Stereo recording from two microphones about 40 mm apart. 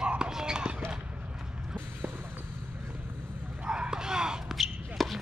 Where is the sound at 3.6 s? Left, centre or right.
Right.